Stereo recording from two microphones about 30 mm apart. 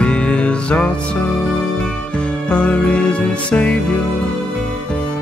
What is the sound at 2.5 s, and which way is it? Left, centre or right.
Music, left.